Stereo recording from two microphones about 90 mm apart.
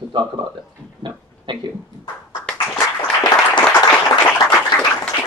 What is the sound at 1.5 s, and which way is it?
Speech, 60° right (ahead or behind).